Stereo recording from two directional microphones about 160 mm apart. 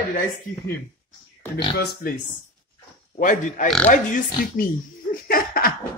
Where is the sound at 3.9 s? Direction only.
55° left (ahead or behind).